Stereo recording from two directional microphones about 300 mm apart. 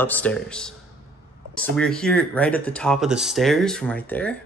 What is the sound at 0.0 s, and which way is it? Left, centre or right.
Speech, centre.